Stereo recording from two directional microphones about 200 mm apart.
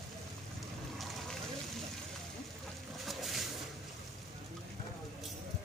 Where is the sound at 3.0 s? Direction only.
Centre (ahead or behind).